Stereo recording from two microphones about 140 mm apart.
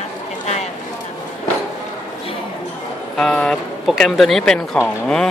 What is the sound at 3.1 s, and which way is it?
Speech, 5° left (ahead or behind).